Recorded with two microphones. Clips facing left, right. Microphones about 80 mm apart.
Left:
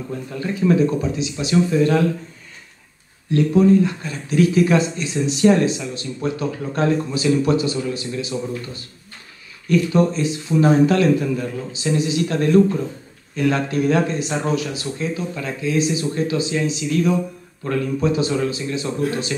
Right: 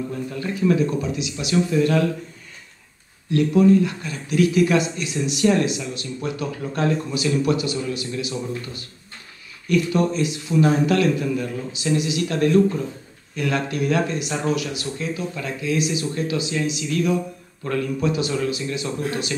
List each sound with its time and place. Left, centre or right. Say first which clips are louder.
0.4 s speech: left 3 dB; left
3.3 s speech: left 1 dB; left